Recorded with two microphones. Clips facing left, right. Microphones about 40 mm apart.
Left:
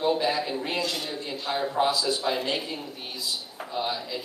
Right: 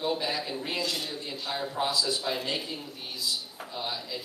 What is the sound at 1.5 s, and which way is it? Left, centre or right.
A man's voice, centre.